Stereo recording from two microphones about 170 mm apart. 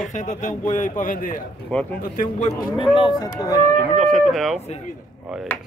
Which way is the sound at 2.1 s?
45° left (ahead or behind).